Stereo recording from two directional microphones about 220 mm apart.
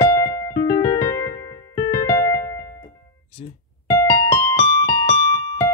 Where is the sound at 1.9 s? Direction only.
15° left (ahead or behind).